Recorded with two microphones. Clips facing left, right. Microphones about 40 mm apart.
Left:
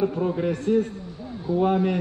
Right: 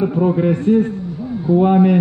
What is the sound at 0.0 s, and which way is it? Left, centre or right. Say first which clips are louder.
A man's voice: right 8 dB; right.